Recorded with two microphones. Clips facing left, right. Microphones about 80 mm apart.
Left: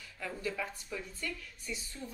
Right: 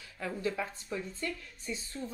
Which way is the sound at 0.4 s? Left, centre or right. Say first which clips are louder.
Right 3 dB; right.